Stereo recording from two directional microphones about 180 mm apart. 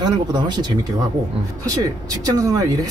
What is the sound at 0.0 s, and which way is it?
Speech, 25° right (ahead or behind).